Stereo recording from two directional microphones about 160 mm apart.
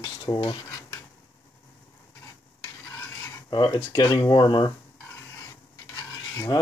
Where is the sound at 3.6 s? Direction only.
20° left (ahead or behind).